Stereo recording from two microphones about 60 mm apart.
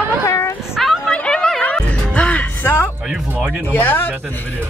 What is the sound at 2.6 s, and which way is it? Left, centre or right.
Music, left.